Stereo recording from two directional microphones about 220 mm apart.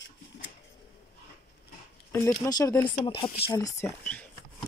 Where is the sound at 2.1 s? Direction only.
15° left (ahead or behind).